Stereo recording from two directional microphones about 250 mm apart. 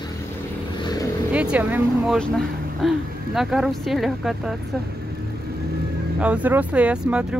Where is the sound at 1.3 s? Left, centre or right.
Centre.